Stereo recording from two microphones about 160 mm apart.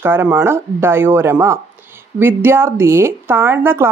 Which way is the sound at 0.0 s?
15° right (ahead or behind).